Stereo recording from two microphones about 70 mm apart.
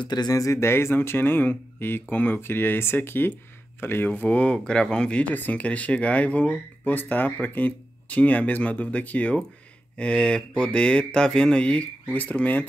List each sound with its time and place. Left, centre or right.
0.0 s speech: left
0.4 s speech: left